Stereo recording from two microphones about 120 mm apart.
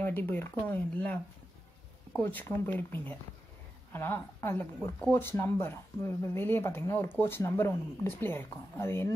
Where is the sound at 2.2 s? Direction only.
20° left (ahead or behind).